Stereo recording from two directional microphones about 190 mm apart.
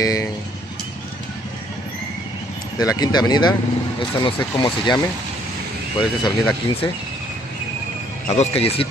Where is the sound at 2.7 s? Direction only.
20° left (ahead or behind).